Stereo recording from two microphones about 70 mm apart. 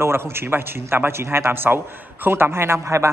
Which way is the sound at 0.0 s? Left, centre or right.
Right.